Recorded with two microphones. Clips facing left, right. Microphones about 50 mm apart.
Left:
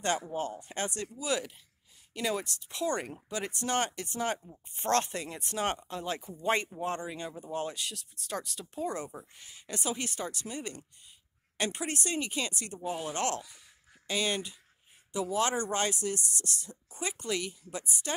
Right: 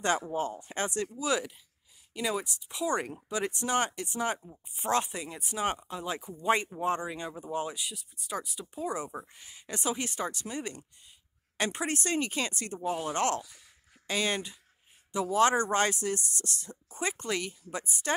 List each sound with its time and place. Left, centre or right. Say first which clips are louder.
0.0 s speech: right 2 dB; right
2.1 s speech: right 1 dB; centre; by 18.1 s right